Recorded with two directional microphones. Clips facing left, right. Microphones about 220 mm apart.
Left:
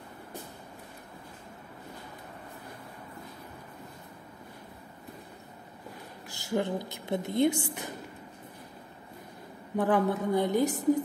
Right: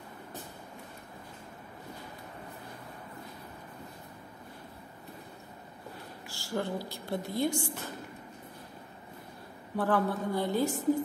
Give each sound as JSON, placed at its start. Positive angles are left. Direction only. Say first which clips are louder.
{"t": 6.2, "sound": "a woman's voice", "louder": "left 4 dB", "side_deg": 20}
{"t": 9.8, "sound": "a woman's voice", "louder": "left 3 dB", "side_deg": 15}